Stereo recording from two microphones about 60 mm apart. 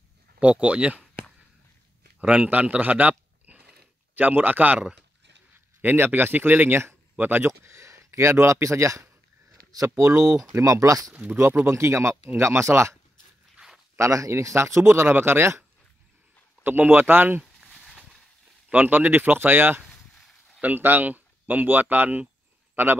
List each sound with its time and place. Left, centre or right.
0.4 s speech: right
2.1 s speech: right
4.7 s speech: centre
5.8 s speech: right
10.2 s speech: centre
10.6 s speech: right
11.3 s a man's voice: right
13.9 s a man's voice: right
16.6 s speech: right
17.7 s a sound: centre
18.7 s speech: right